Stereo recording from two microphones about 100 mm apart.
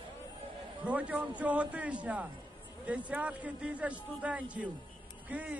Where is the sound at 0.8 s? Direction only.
15° right (ahead or behind).